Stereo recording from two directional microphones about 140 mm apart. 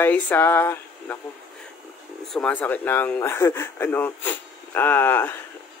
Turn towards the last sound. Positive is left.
turn(degrees=15)  # may be behind; listen again after turning